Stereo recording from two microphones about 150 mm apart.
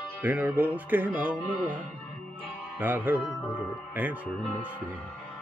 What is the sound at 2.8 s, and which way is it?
Music, 10° right (ahead or behind).